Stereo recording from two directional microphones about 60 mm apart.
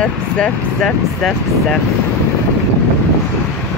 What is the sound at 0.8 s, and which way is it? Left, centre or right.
Speech, centre.